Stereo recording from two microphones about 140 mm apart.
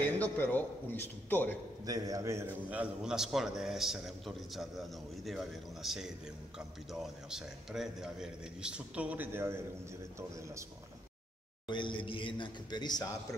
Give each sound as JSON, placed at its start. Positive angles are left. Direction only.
{"t": 0.0, "sound": "a man's voice", "side_deg": 10}
{"t": 1.9, "sound": "a man's voice", "side_deg": -25}
{"t": 2.7, "sound": "a man's voice", "side_deg": -5}
{"t": 11.6, "sound": "a man's voice", "side_deg": 35}